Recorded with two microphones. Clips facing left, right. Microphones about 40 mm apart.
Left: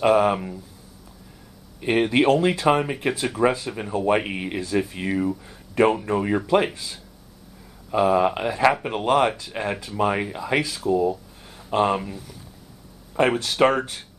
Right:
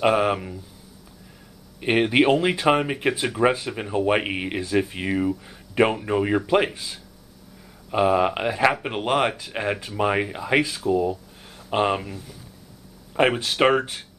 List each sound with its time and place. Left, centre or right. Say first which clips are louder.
0.0 s speech: left 2 dB; centre
1.8 s speech: right 1 dB; right
7.9 s speech: left 1 dB; centre
10.9 s a sound: left 1 dB; centre
11.7 s speech: left 1 dB; centre
13.4 s speech: even; centre